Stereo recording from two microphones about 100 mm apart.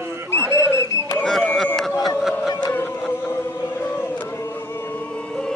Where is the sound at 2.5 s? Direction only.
40° left (ahead or behind).